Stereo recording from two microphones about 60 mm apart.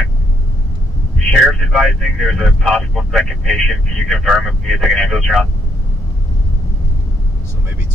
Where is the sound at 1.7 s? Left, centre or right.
Centre.